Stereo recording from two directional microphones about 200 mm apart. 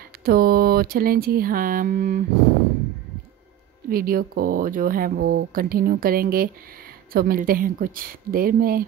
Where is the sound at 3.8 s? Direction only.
45° right (ahead or behind).